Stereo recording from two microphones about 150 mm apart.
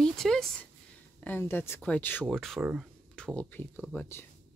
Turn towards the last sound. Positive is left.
turn(degrees=15)  # may be behind; listen again after turning